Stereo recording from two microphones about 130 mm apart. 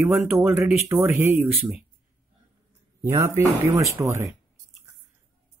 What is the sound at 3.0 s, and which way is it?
Speech, 25° right (ahead or behind).